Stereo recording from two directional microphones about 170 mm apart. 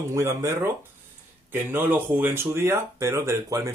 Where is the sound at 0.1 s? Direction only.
15° right (ahead or behind).